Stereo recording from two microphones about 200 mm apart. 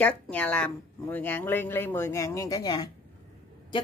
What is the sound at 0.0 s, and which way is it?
Speech, 5° left (ahead or behind).